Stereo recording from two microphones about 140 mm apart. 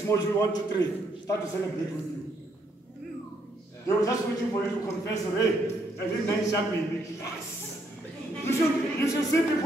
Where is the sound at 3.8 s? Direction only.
25° left (ahead or behind).